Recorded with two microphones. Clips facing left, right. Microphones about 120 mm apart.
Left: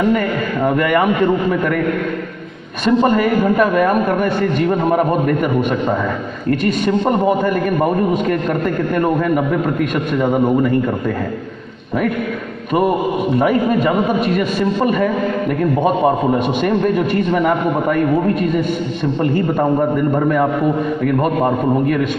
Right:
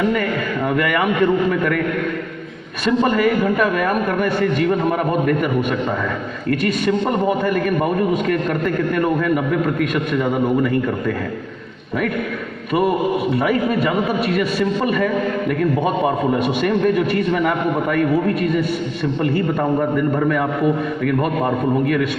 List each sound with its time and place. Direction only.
0.1 s a man's voice: 30° left (ahead or behind)
2.8 s a man's voice: 30° left (ahead or behind)
13.4 s a man's voice: 25° left (ahead or behind)
16.3 s a man's voice: 25° left (ahead or behind)
20.2 s a man's voice: 30° left (ahead or behind)